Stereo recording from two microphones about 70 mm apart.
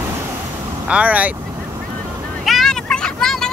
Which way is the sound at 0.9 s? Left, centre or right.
Centre.